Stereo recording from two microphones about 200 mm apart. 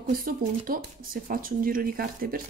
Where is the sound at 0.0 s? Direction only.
45° right (ahead or behind).